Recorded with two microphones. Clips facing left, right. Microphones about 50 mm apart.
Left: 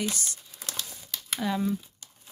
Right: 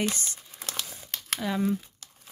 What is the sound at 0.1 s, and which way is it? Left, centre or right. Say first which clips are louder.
Crumpling: even; right.